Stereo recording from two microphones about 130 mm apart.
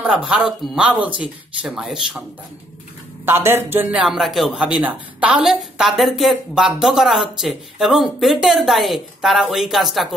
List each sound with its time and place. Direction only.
0.0 s speech: 5° right (ahead or behind)
3.3 s speech: 15° right (ahead or behind)
4.0 s a woman's voice: centre (ahead or behind)